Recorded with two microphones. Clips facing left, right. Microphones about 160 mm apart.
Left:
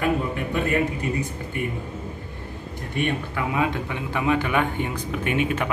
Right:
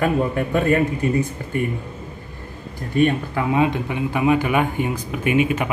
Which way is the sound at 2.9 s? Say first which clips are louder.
Right 7 dB; 30° right (ahead or behind).